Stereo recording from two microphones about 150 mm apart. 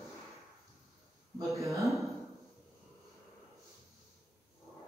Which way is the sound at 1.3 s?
20° right (ahead or behind).